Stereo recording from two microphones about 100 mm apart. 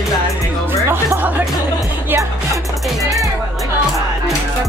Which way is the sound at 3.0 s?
Centre (ahead or behind).